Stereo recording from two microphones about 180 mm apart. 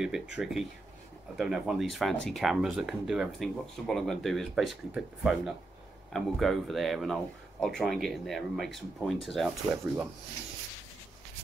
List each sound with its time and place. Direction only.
0.0 s speech: 5° right (ahead or behind)